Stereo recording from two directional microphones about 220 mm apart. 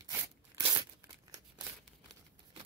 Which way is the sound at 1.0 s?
15° right (ahead or behind).